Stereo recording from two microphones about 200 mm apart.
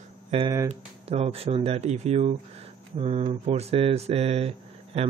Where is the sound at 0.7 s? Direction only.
30° right (ahead or behind).